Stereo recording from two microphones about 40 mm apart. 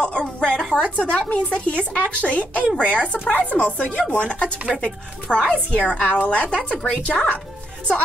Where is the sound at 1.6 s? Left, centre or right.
Left.